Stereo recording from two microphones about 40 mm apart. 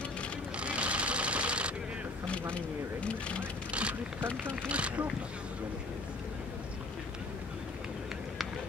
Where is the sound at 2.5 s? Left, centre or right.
Left.